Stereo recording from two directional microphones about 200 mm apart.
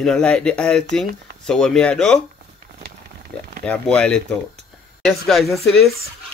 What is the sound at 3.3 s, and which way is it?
Speech, 5° left (ahead or behind).